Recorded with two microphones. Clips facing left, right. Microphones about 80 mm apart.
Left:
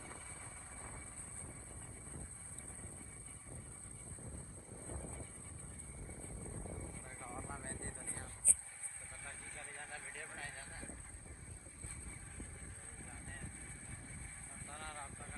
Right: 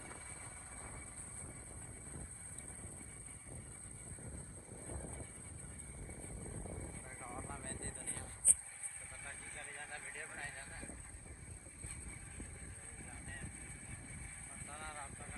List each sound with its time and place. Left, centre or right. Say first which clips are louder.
6.4 s vehicle: even; centre
7.6 s vehicle: even; centre
9.2 s vehicle: right 1 dB; centre
14.7 s vehicle: even; centre